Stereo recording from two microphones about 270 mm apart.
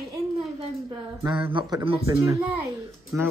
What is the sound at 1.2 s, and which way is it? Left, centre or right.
A man's voice, centre.